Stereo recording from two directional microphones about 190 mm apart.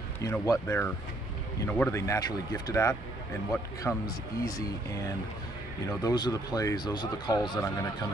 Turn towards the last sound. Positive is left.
turn(degrees=25)  # may be behind; listen again after turning